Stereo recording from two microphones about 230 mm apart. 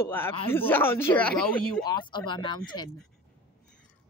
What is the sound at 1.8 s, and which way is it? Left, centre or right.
Speech, centre.